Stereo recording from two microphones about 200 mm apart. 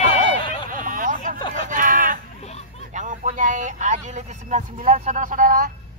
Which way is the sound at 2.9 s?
40° right (ahead or behind).